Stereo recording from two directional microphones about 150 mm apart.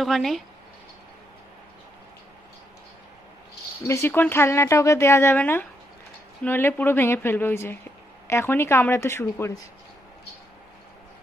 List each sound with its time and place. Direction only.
0.0 s speech: centre (ahead or behind)
3.8 s speech: 15° left (ahead or behind)